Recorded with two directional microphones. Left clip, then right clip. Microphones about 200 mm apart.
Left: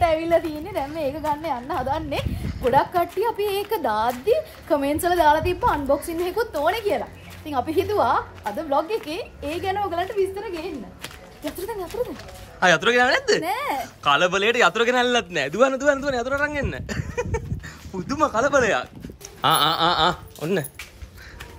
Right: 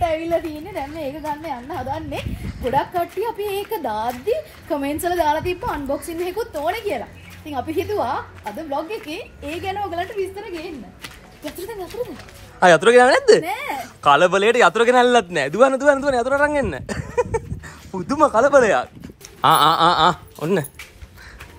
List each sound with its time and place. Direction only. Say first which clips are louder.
0.0 s a child's voice: left 1 dB; centre (ahead or behind)
12.5 s a child's voice: right 6 dB; centre (ahead or behind)